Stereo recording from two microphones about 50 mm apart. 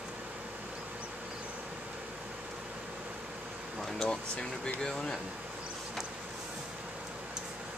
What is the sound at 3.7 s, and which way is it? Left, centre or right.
Air conditioning, centre.